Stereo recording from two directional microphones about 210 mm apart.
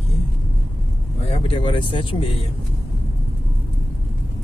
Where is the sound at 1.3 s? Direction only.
25° left (ahead or behind).